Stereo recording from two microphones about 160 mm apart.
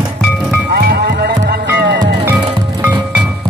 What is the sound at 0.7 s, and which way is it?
Music, 75° right (ahead or behind).